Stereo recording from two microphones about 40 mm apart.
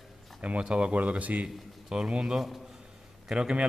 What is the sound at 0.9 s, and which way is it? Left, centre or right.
Speech, right.